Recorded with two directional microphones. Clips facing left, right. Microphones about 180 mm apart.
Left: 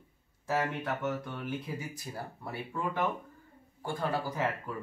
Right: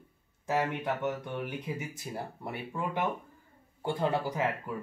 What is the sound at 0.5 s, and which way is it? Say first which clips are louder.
Speech: right 2 dB; 15° right (ahead or behind).